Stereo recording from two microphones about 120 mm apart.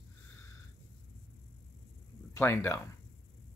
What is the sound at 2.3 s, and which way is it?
Speech, 20° left (ahead or behind).